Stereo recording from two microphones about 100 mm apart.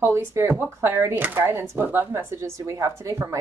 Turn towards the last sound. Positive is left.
turn(degrees=-30)  # may be behind; listen again after turning